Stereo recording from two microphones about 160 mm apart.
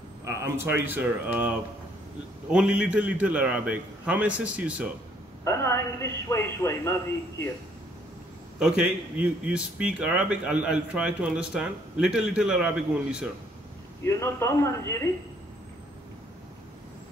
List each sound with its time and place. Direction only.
0.2 s a man's voice: 20° right (ahead or behind)
5.4 s a man's voice: 15° left (ahead or behind)
8.5 s a man's voice: 5° right (ahead or behind)
14.0 s a man's voice: 15° left (ahead or behind)